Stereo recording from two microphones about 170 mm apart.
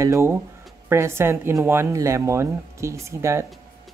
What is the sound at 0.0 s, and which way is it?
Speech, 15° right (ahead or behind).